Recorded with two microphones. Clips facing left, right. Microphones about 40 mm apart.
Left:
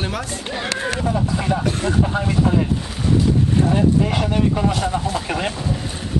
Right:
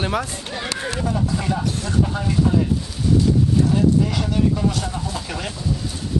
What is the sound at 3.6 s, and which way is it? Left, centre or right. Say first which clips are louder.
Speech: left 2 dB; left.